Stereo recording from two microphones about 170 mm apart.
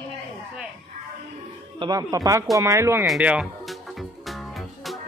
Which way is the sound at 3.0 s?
5° right (ahead or behind).